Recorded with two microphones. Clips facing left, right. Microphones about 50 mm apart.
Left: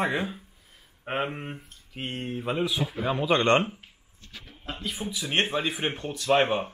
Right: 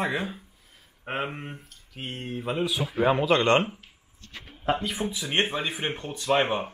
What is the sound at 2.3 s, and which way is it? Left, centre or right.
Speech, centre.